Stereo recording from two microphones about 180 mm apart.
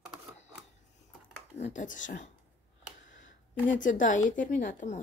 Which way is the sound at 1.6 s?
45° left (ahead or behind).